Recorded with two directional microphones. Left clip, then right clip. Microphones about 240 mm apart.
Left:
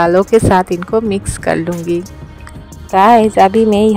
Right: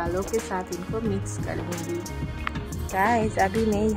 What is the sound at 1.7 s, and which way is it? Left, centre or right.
Speech, centre.